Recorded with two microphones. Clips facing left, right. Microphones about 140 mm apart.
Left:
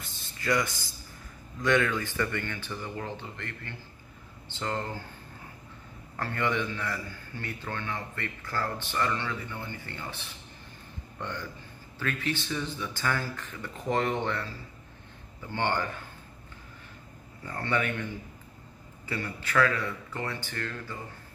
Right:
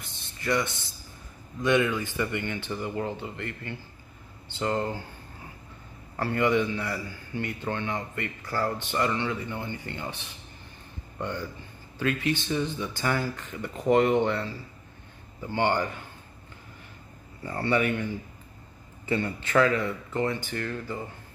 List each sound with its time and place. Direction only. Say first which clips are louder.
0.0 s a sound: right 1 dB; 20° right (ahead or behind)
1.6 s a man's voice: right 2 dB; 15° right (ahead or behind)
6.1 s a man's voice: right 6 dB; 10° right (ahead or behind)
17.5 s a man's voice: right 5 dB; 10° right (ahead or behind)
19.0 s speech: right 7 dB; 25° right (ahead or behind)